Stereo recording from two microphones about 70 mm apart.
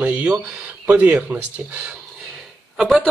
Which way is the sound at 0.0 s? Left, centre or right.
Centre.